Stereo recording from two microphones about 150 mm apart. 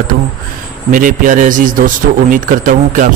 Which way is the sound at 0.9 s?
65° right (ahead or behind).